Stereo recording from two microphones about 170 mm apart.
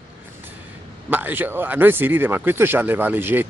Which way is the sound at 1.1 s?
10° right (ahead or behind).